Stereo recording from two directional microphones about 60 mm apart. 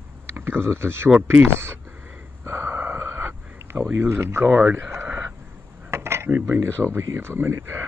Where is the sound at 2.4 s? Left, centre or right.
Right.